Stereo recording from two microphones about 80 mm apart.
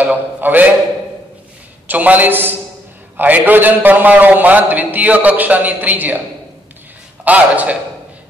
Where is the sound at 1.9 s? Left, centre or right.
Right.